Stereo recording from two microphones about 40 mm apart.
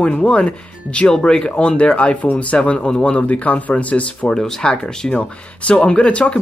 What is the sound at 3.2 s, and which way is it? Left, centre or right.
Speech, left.